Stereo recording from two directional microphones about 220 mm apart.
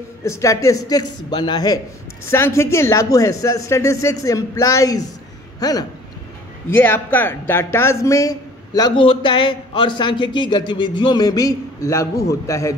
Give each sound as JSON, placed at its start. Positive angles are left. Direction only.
{"t": 0.2, "sound": "speech", "side_deg": 15}